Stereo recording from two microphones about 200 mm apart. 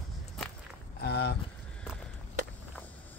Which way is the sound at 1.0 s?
55° left (ahead or behind).